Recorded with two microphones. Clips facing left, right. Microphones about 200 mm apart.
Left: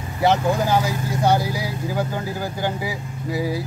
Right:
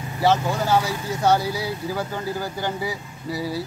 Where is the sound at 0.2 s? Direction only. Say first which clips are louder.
Left 2 dB; 15° left (ahead or behind).